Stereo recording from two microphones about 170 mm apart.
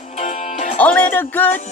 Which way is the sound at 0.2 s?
45° left (ahead or behind).